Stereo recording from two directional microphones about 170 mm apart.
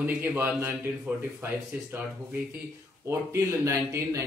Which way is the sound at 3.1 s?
15° right (ahead or behind).